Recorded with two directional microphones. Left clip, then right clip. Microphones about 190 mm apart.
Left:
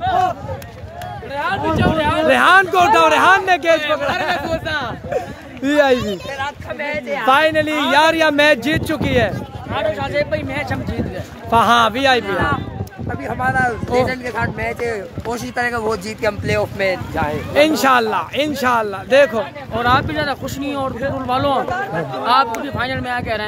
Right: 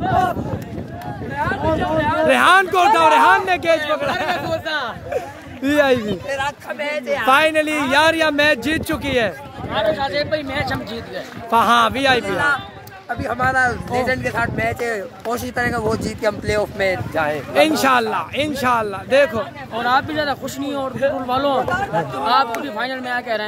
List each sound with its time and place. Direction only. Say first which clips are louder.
1.4 s a sound: left 2 dB; 60° left (ahead or behind)
2.2 s speech: left 2 dB; centre (ahead or behind)
6.3 s a sound: right 1 dB; 60° right (ahead or behind)
7.2 s speech: left 1 dB; centre (ahead or behind)
13.2 s speech: even; 30° right (ahead or behind)
15.5 s speech: left 2 dB; centre (ahead or behind)
17.1 s speech: right 1 dB; 30° right (ahead or behind)
17.6 s speech: left 2 dB; 5° left (ahead or behind)
19.8 s speech: left 2 dB; centre (ahead or behind)